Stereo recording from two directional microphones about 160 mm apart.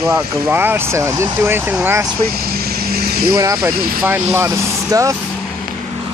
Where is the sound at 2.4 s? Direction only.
70° right (ahead or behind).